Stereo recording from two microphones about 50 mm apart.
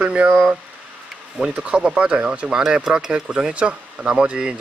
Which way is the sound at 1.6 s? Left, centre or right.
Right.